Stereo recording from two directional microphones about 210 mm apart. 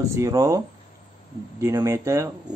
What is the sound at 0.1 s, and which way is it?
Speech, 15° right (ahead or behind).